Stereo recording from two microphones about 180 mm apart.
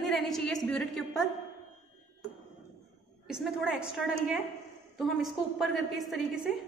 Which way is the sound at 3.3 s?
5° right (ahead or behind).